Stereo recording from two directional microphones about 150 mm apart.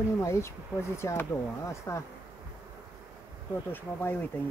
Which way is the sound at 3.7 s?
15° left (ahead or behind).